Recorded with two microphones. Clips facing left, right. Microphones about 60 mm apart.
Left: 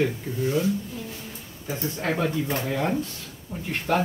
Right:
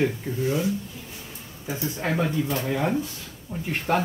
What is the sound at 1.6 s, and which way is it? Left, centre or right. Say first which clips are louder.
Speech: even; centre.